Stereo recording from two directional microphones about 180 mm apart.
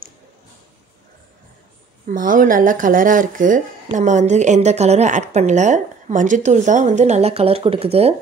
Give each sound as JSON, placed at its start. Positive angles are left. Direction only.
{"t": 2.0, "sound": "speech", "side_deg": -50}